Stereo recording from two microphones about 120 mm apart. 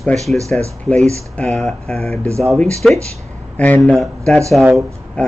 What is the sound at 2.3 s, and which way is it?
Speech, 25° right (ahead or behind).